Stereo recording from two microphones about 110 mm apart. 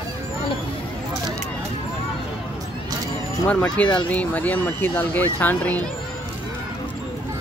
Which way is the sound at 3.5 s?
10° left (ahead or behind).